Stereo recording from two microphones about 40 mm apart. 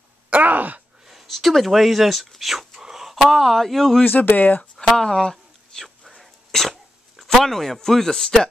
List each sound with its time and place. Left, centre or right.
0.3 s groan: right
1.0 s speech: centre
3.2 s speech: centre
4.0 s speech: left
4.7 s a sound: centre
6.5 s speech: centre